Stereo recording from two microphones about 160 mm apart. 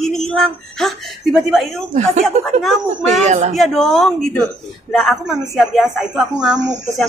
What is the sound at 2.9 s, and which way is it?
Speech, 50° right (ahead or behind).